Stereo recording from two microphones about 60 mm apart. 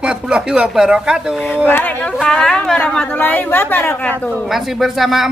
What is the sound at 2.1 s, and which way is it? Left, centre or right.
Speech, centre.